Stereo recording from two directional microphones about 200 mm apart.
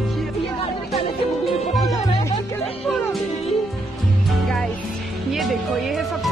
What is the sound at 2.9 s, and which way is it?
Music, 5° left (ahead or behind).